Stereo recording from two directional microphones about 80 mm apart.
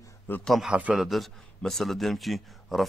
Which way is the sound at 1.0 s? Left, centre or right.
Centre.